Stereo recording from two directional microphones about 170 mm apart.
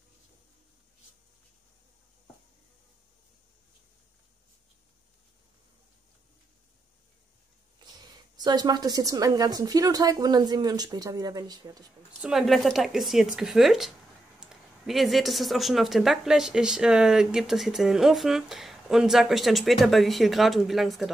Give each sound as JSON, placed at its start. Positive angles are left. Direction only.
{"t": 7.8, "sound": "a woman's voice", "side_deg": -25}
{"t": 12.2, "sound": "speech", "side_deg": 0}